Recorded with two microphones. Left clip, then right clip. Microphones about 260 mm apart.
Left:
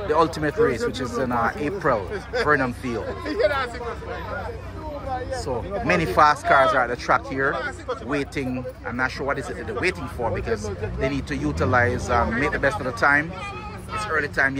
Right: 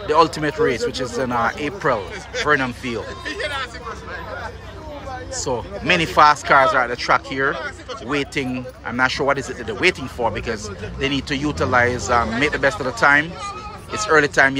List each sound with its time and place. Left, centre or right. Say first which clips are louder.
0.1 s speech: right 5 dB; centre
3.3 s speech: left 5 dB; centre
5.4 s speech: right 2 dB; centre